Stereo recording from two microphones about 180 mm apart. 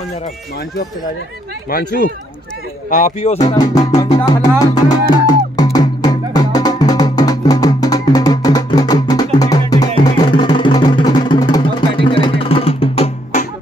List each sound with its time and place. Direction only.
1.7 s speech: 55° left (ahead or behind)
2.9 s speech: 40° left (ahead or behind)
4.0 s music: 20° left (ahead or behind); by 13.5 s 35° left (ahead or behind)